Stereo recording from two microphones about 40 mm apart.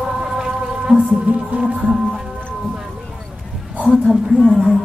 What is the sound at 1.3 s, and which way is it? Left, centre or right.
Music, right.